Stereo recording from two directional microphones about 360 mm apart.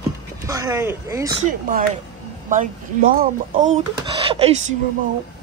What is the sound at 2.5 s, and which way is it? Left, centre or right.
Speech, right.